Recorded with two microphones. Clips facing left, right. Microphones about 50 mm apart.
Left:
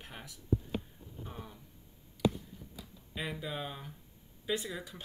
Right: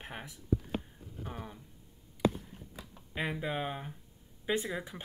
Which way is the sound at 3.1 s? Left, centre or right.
Right.